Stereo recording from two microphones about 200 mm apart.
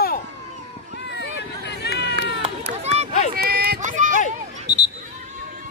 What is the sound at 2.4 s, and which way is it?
Run, 30° right (ahead or behind).